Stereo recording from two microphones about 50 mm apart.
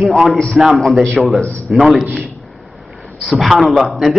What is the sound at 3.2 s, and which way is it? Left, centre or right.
A man's voice, centre.